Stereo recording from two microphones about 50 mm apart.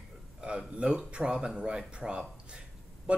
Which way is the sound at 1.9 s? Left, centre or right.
Centre.